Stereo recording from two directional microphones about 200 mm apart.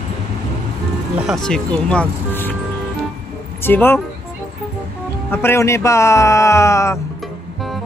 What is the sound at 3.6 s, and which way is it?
Speech, 10° left (ahead or behind).